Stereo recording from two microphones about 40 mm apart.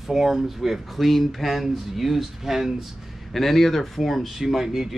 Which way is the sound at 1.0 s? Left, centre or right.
Centre.